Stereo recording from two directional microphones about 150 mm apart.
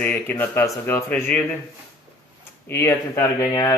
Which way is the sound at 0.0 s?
10° left (ahead or behind).